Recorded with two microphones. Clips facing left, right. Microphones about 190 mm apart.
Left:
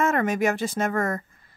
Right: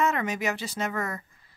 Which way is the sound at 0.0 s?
50° left (ahead or behind).